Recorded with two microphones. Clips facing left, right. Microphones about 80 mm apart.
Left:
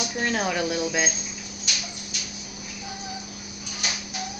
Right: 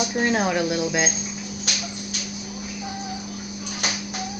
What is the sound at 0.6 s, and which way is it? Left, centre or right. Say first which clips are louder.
Speech: right 3 dB; centre.